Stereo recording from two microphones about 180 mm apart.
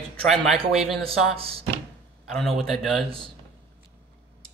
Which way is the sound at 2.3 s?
Centre (ahead or behind).